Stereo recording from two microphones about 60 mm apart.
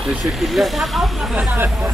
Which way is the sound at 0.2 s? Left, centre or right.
Centre.